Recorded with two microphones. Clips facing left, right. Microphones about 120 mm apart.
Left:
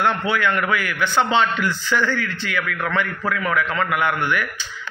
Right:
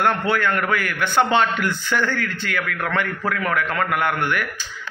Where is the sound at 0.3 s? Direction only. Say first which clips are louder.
Even; 45° right (ahead or behind).